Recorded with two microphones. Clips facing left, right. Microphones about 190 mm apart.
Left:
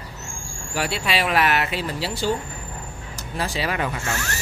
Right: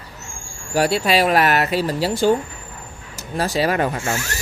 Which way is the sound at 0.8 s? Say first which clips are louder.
Right 7 dB; 40° right (ahead or behind).